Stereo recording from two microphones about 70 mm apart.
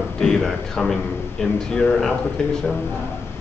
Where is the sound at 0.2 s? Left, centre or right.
Centre.